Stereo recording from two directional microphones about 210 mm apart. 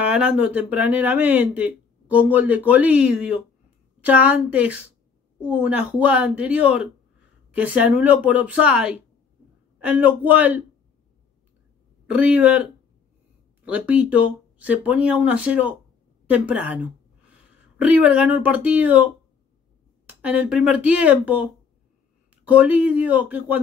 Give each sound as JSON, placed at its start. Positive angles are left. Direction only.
{"t": 0.1, "sound": "speech", "side_deg": -5}
{"t": 12.1, "sound": "a woman's voice", "side_deg": -5}
{"t": 20.1, "sound": "speech", "side_deg": -5}